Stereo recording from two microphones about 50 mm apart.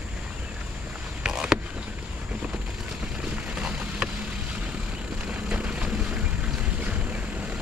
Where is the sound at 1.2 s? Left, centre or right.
Centre.